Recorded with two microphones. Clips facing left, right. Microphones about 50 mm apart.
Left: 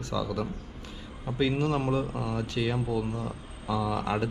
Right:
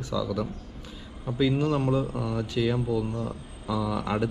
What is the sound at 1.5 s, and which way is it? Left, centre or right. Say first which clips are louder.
Speech: right 2 dB; left.